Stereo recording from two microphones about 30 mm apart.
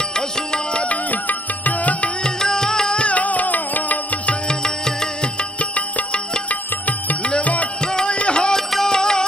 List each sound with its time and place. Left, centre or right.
0.1 s music: left
0.8 s music: left
2.2 s music: left
3.1 s music: left
4.5 s music: left
5.6 s music: left
7.8 s music: left
8.1 s music: left
8.8 s music: left